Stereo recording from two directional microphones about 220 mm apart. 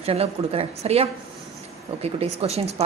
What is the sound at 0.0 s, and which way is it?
A woman's voice, 25° right (ahead or behind).